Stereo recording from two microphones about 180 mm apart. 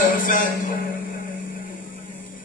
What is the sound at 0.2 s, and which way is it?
Music, 50° left (ahead or behind).